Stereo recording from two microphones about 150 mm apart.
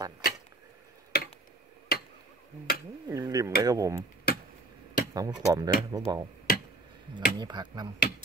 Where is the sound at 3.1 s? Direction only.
25° right (ahead or behind).